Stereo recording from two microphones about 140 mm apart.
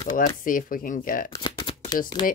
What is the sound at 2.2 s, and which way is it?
Speech, 35° left (ahead or behind).